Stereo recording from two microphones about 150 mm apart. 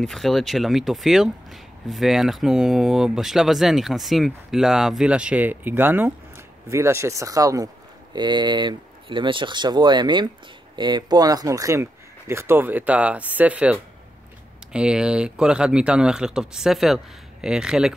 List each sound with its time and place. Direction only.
0.0 s speech: centre (ahead or behind)